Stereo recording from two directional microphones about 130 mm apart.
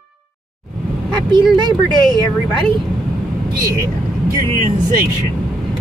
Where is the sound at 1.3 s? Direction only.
35° right (ahead or behind).